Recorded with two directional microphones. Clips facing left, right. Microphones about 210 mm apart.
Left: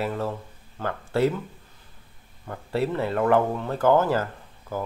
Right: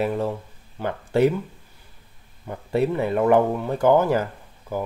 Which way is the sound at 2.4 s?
15° right (ahead or behind).